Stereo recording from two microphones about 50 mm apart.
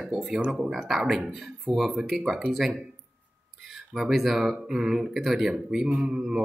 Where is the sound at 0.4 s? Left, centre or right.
Centre.